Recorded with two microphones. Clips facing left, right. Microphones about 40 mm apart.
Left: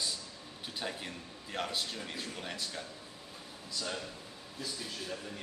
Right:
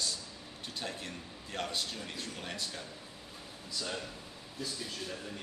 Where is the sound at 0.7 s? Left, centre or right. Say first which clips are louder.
Left 1 dB; centre.